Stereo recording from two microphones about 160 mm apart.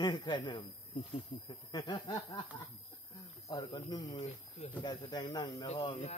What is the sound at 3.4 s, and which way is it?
Speech, 25° left (ahead or behind).